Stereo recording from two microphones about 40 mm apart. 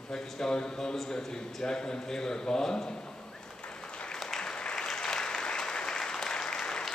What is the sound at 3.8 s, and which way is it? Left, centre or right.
Applause, left.